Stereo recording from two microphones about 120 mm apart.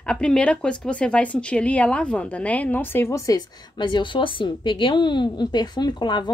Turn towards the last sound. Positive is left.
turn(degrees=40)  # may be behind; listen again after turning